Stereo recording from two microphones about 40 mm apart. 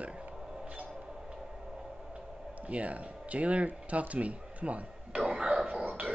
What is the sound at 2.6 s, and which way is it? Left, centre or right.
Speech, right.